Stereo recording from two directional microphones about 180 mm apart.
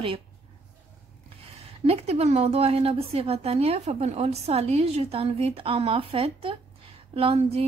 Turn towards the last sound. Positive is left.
turn(degrees=-35)  # may be behind; listen again after turning